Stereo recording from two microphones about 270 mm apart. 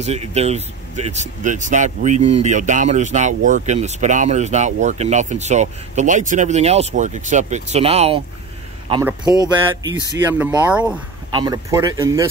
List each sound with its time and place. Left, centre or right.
0.0 s speech: right
9.4 s speech: centre